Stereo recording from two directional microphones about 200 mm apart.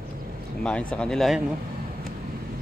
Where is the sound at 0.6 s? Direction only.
5° left (ahead or behind).